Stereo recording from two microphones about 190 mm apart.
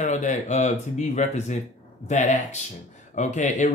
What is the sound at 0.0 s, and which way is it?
Speech, 40° left (ahead or behind).